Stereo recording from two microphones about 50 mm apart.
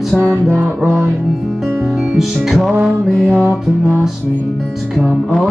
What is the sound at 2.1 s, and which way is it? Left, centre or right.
Music, centre.